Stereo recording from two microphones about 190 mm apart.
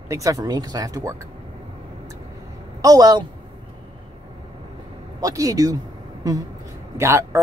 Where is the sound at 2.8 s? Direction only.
20° right (ahead or behind).